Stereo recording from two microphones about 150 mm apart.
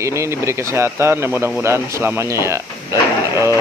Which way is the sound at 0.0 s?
20° right (ahead or behind).